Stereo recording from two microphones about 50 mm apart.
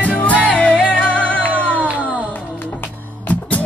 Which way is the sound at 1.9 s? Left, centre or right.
Centre.